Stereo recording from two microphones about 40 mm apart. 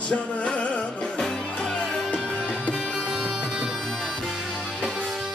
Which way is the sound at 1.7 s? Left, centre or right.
Centre.